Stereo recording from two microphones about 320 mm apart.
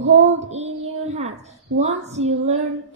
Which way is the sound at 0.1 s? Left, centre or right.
Right.